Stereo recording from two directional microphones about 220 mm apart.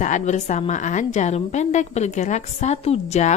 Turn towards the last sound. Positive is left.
turn(degrees=30)  # may be behind; listen again after turning